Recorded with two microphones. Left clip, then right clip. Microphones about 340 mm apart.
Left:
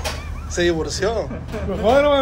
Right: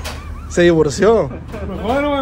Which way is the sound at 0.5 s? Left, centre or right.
Centre.